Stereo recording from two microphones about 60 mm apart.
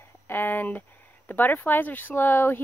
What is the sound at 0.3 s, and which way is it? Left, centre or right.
Speech, left.